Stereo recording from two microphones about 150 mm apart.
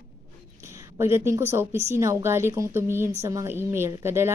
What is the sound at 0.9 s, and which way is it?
Speech, 15° right (ahead or behind).